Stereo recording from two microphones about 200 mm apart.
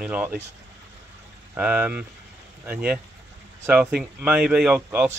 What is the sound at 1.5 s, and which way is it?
Speech, 10° right (ahead or behind).